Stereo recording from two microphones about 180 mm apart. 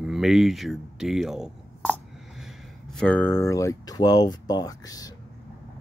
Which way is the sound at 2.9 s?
5° left (ahead or behind).